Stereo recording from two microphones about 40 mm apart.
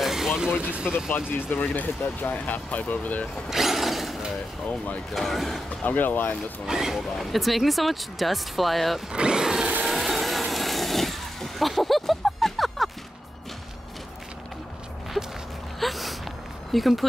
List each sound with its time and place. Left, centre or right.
0.0 s a sound: centre
1.1 s speech: left
3.4 s speech: centre
4.6 s speech: left
5.1 s speech: centre
5.9 s speech: left
6.6 s speech: centre
9.1 s speech: right
9.8 s vehicle: centre
15.8 s a sound: centre
16.7 s speech: centre